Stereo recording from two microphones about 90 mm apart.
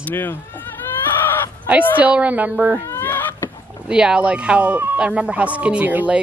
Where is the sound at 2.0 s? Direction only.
15° right (ahead or behind).